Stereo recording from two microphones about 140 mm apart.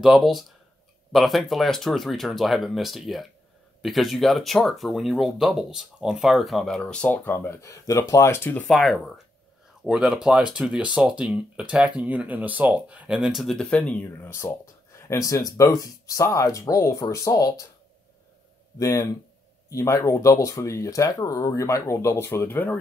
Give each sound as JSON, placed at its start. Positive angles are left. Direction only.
{"t": 0.0, "sound": "speech", "side_deg": 0}
{"t": 8.6, "sound": "speech", "side_deg": 0}
{"t": 18.8, "sound": "speech", "side_deg": 25}